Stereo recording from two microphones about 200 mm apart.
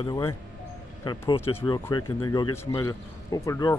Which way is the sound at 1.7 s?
25° left (ahead or behind).